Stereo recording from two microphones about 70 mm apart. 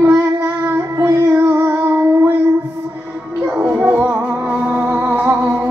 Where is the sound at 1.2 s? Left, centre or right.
Right.